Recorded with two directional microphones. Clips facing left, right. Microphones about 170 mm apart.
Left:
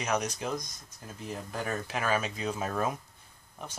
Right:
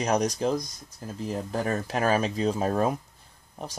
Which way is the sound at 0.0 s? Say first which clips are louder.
Right 7 dB; 35° right (ahead or behind).